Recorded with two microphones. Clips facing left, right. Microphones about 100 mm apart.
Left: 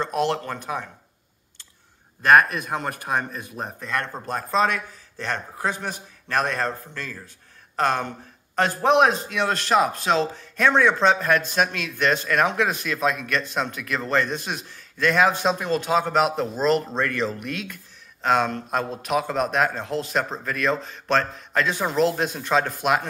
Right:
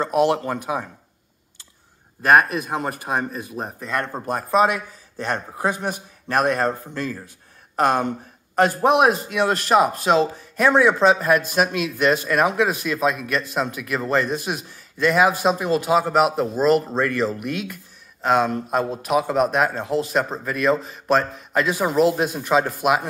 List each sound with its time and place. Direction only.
0.0 s a man's voice: 15° right (ahead or behind)
2.2 s a man's voice: 5° right (ahead or behind)